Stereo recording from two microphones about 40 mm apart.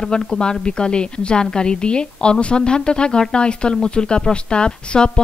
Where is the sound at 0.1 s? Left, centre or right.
Left.